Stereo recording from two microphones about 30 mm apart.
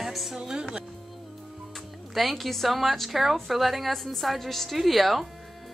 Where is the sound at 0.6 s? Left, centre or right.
Right.